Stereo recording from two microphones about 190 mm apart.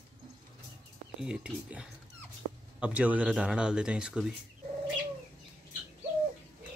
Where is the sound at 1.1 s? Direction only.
5° right (ahead or behind).